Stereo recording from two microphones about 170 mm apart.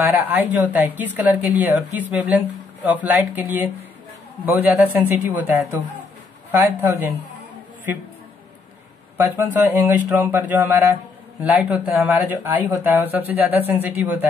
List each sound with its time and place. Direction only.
0.0 s speech: 10° right (ahead or behind)
9.1 s speech: 10° right (ahead or behind)